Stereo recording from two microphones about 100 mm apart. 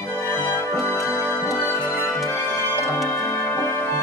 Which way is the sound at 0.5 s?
25° left (ahead or behind).